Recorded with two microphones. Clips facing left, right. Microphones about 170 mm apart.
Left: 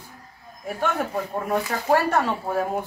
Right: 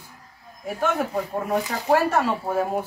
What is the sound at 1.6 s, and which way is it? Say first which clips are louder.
Speech: even; 15° right (ahead or behind).